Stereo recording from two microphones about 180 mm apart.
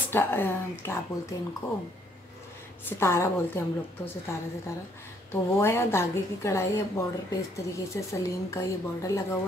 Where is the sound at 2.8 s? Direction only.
15° left (ahead or behind).